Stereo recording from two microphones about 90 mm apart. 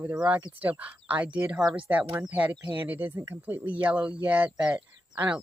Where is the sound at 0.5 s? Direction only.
20° right (ahead or behind).